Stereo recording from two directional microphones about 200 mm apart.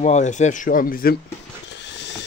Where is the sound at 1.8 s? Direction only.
60° left (ahead or behind).